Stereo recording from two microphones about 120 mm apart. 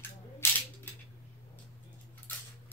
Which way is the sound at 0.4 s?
20° left (ahead or behind).